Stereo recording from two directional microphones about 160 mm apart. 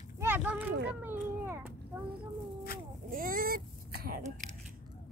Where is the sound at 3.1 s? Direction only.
60° right (ahead or behind).